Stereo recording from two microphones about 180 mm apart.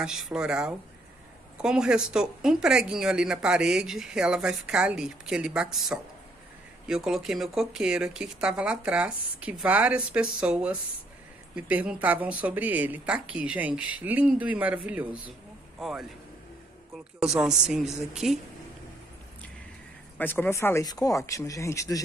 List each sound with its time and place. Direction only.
0.0 s speech: 5° right (ahead or behind)
17.4 s speech: 5° right (ahead or behind)
20.2 s speech: 10° left (ahead or behind)